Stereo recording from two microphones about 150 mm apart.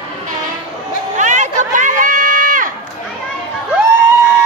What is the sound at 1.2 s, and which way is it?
Run, 55° right (ahead or behind).